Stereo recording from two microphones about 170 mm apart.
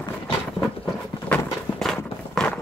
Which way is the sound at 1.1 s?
5° left (ahead or behind).